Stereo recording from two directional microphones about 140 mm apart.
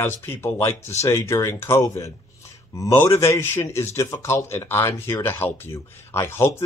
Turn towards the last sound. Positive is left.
turn(degrees=15)  # may be behind; listen again after turning